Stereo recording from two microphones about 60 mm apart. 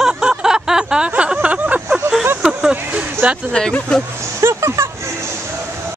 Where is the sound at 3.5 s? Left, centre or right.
Centre.